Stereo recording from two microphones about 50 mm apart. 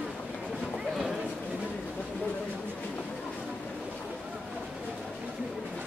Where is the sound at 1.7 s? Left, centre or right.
Left.